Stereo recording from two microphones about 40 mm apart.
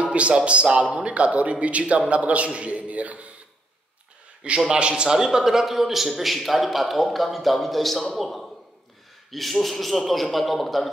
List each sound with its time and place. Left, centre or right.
0.0 s a man's voice: right
4.4 s a man's voice: right; by 10.9 s centre